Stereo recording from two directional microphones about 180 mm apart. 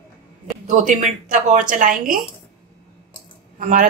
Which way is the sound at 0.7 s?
45° right (ahead or behind).